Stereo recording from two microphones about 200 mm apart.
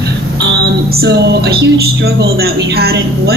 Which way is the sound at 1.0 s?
55° right (ahead or behind).